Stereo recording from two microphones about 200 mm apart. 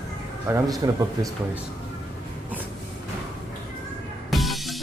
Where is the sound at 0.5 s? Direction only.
20° right (ahead or behind).